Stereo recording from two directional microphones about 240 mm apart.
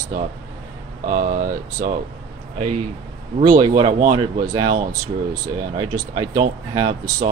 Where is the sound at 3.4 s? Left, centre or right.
Centre.